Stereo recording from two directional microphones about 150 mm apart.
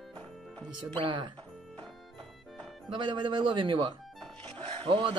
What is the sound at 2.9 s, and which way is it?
Speech, 30° right (ahead or behind).